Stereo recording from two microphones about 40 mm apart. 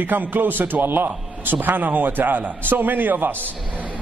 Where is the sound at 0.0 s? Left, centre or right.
Right.